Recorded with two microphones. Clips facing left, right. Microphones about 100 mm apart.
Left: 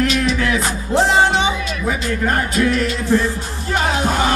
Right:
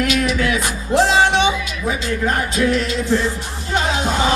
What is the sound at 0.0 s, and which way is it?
Music, 30° left (ahead or behind).